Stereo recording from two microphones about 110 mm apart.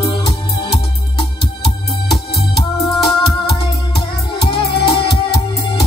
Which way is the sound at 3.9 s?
60° left (ahead or behind).